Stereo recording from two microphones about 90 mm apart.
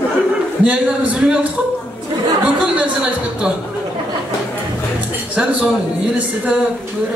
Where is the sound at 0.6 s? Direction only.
15° right (ahead or behind).